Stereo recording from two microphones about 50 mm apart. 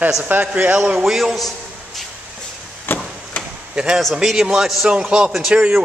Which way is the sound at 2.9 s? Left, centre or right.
Left.